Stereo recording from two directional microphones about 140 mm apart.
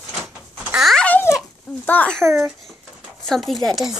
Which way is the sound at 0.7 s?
5° left (ahead or behind).